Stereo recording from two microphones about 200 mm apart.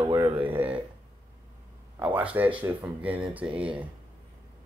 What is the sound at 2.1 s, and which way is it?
Speech, 10° right (ahead or behind).